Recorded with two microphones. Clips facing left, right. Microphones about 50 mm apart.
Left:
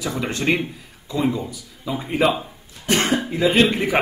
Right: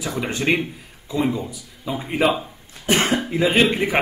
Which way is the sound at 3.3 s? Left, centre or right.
Centre.